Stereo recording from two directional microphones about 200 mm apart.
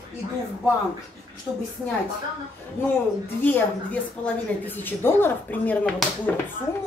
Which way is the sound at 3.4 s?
10° left (ahead or behind).